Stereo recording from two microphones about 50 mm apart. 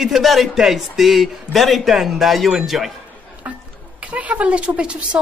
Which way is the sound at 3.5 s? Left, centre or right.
Right.